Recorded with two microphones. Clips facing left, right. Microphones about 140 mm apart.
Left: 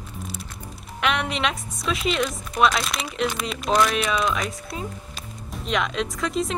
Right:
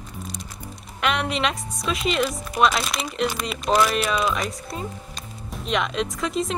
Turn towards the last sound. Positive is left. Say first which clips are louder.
# even
turn(degrees=0)  # may be behind; listen again after turning